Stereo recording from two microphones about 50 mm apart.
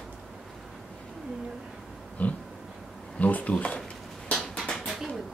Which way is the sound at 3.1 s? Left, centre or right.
Left.